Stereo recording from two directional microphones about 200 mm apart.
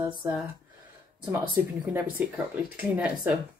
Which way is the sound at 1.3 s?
10° right (ahead or behind).